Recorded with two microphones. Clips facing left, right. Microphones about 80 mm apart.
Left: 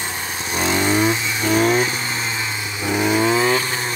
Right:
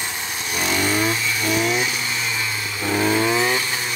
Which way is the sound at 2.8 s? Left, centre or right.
Centre.